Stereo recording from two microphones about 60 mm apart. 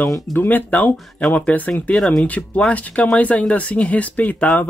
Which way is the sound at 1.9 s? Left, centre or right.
Centre.